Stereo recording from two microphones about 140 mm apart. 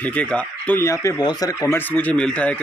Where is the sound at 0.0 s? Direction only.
10° left (ahead or behind).